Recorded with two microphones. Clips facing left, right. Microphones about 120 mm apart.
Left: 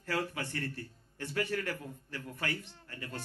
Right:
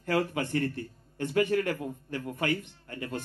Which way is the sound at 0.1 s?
20° right (ahead or behind).